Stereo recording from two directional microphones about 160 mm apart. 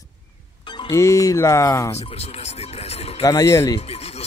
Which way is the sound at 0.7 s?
30° left (ahead or behind).